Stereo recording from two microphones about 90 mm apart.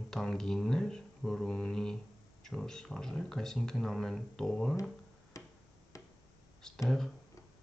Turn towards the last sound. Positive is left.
turn(degrees=5)  # may be behind; listen again after turning